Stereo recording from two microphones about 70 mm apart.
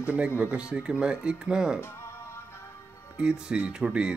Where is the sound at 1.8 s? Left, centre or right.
Left.